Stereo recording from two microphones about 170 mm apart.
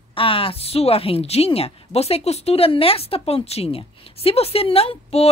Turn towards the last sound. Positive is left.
turn(degrees=35)  # may be behind; listen again after turning